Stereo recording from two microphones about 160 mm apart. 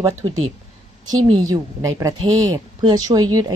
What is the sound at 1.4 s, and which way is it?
A woman's voice, 20° right (ahead or behind).